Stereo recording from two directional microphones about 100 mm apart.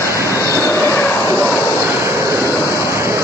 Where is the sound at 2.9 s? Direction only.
25° right (ahead or behind).